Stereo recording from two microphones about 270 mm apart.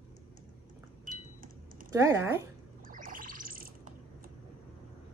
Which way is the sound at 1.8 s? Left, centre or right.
Centre.